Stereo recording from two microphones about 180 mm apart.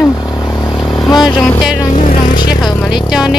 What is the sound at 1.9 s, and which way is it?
Vehicle, 45° left (ahead or behind).